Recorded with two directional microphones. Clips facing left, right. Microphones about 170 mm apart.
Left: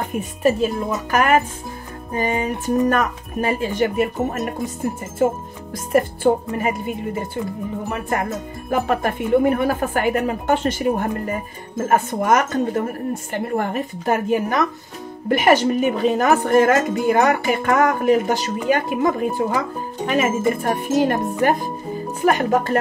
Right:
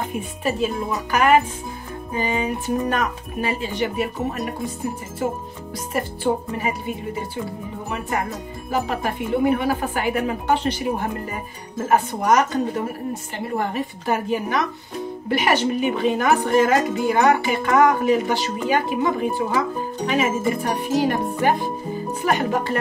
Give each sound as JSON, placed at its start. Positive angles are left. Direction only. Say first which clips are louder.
{"t": 0.4, "sound": "a woman's voice", "louder": "left 5 dB", "side_deg": 45}
{"t": 2.1, "sound": "a woman's voice", "louder": "left 2 dB", "side_deg": 45}
{"t": 5.9, "sound": "a woman's voice", "louder": "left 6 dB", "side_deg": 50}
{"t": 8.6, "sound": "a woman's voice", "louder": "left 4 dB", "side_deg": 55}